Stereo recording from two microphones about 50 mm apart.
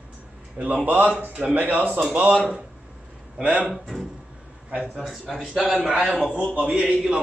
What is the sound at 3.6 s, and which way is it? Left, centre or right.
A man's voice, centre.